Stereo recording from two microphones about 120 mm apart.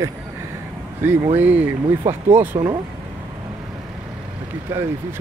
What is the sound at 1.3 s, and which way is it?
Speech, 10° right (ahead or behind).